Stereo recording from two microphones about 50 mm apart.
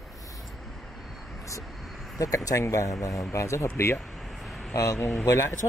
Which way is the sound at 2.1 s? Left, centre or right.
Left.